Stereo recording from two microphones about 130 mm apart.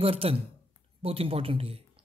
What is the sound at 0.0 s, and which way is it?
Speech, 45° right (ahead or behind).